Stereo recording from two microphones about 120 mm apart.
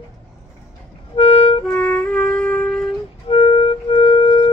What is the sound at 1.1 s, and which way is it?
Music, 55° left (ahead or behind).